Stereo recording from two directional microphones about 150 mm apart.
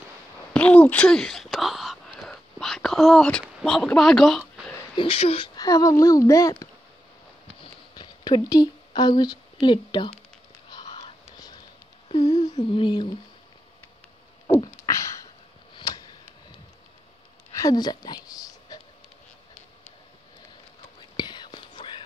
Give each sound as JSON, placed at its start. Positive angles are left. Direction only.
{"t": 0.5, "sound": "whispering", "side_deg": 10}
{"t": 4.9, "sound": "speech", "side_deg": 40}
{"t": 5.6, "sound": "speech", "side_deg": 25}
{"t": 7.6, "sound": "a sound", "side_deg": 30}
{"t": 10.7, "sound": "whispering", "side_deg": 30}
{"t": 11.2, "sound": "whispering", "side_deg": 25}
{"t": 12.3, "sound": "a sound", "side_deg": 50}
{"t": 12.7, "sound": "speech", "side_deg": 30}
{"t": 14.8, "sound": "a sound", "side_deg": 20}
{"t": 15.7, "sound": "tick-tock", "side_deg": 25}
{"t": 17.6, "sound": "a sound", "side_deg": 25}
{"t": 21.2, "sound": "whispering", "side_deg": 30}